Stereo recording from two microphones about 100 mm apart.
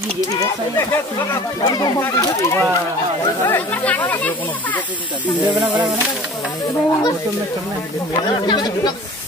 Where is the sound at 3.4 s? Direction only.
20° left (ahead or behind).